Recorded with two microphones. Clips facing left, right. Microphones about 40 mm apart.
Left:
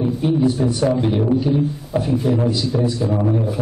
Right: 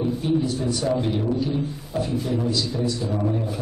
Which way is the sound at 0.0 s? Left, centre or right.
Centre.